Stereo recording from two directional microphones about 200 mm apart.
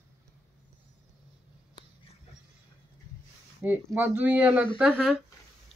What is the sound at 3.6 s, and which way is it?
Speech, 10° right (ahead or behind).